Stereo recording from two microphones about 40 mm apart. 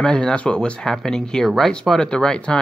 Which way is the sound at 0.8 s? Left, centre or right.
Centre.